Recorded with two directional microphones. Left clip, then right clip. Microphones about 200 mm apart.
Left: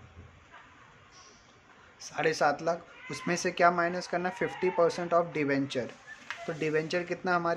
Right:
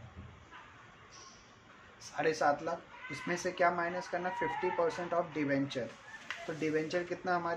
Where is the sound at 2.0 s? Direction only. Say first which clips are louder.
Left 4 dB; 30° left (ahead or behind).